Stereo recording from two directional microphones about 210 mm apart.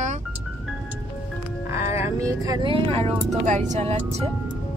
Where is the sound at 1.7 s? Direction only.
15° right (ahead or behind); by 4.2 s 30° right (ahead or behind).